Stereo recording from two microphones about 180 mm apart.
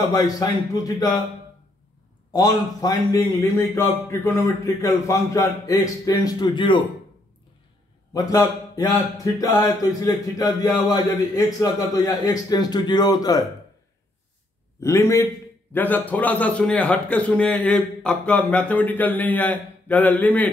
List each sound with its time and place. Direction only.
0.1 s speech: 20° left (ahead or behind)
2.3 s speech: 20° left (ahead or behind)
8.1 s speech: 20° left (ahead or behind)
14.8 s a man's voice: 15° left (ahead or behind)